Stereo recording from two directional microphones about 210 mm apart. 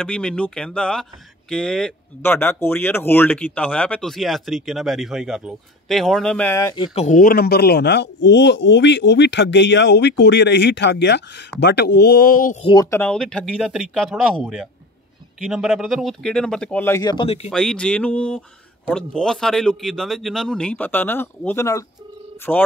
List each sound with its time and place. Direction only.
0.0 s speech: 5° left (ahead or behind); by 7.1 s 20° left (ahead or behind)
7.1 s speech: 45° left (ahead or behind)
12.6 s speech: 15° left (ahead or behind)
17.5 s speech: 5° left (ahead or behind)